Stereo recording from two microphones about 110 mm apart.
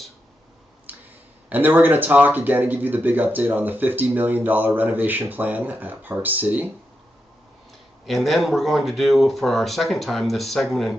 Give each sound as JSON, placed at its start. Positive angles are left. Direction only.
{"t": 0.9, "sound": "a sound", "side_deg": -15}
{"t": 1.5, "sound": "speech", "side_deg": -15}
{"t": 8.1, "sound": "speech", "side_deg": 0}